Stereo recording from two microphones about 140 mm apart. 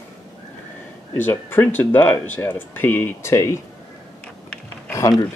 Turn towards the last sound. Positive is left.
turn(degrees=20)  # may be behind; listen again after turning